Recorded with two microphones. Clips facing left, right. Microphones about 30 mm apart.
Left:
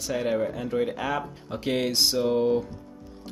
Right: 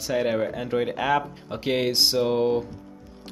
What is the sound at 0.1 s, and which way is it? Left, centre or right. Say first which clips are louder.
Speech: right 2 dB; right.